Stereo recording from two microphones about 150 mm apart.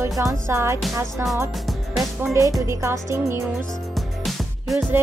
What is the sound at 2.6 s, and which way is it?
Music, 20° right (ahead or behind).